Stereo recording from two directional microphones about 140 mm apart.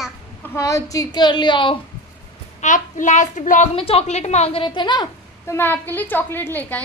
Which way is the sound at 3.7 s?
45° left (ahead or behind).